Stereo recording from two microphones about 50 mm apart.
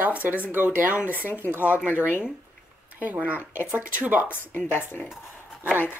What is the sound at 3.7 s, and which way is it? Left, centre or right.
Speech, right.